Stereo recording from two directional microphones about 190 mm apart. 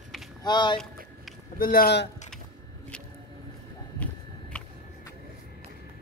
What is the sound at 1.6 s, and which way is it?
Speech, 50° left (ahead or behind).